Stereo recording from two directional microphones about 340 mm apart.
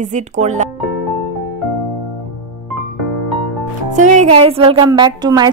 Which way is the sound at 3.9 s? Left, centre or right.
Right.